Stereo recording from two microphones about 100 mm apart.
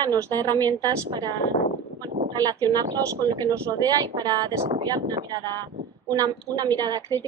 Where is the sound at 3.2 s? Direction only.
40° right (ahead or behind).